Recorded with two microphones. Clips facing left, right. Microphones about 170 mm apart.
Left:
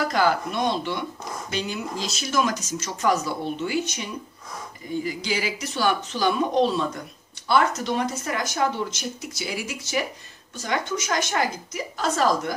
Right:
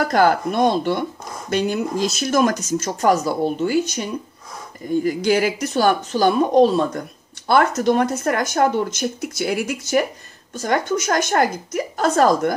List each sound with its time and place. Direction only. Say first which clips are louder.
0.0 s speech: right 5 dB; 50° right (ahead or behind)
5.0 s speech: right 11 dB; 55° right (ahead or behind)